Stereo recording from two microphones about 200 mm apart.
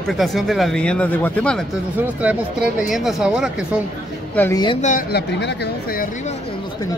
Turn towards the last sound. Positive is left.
turn(degrees=45)  # may be behind; listen again after turning